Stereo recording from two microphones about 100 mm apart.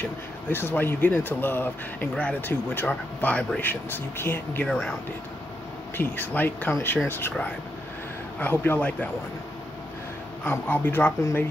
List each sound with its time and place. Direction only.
0.5 s speech: 20° left (ahead or behind)
4.6 s speech: 10° left (ahead or behind)
5.9 s speech: 20° left (ahead or behind)
8.4 s speech: 15° left (ahead or behind)
10.4 s speech: 20° left (ahead or behind)